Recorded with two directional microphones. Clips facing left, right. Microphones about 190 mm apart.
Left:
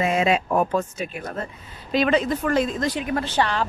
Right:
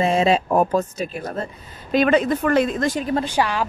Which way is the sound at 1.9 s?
50° right (ahead or behind).